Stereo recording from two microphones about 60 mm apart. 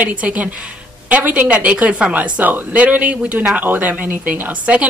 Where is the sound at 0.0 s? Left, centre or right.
Right.